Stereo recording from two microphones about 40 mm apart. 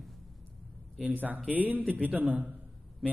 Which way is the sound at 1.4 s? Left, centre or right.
Right.